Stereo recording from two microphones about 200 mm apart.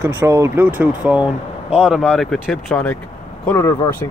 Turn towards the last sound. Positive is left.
turn(degrees=15)  # may be behind; listen again after turning